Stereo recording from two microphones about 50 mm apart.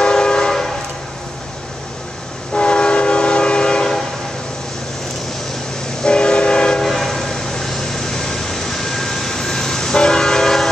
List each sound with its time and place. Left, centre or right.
0.0 s train: centre
2.5 s train: centre
6.0 s train: centre
6.9 s train: centre